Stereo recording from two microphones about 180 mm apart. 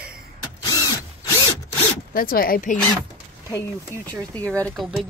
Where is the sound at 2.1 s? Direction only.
55° left (ahead or behind).